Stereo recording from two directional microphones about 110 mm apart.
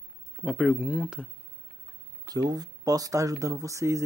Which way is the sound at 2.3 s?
35° right (ahead or behind).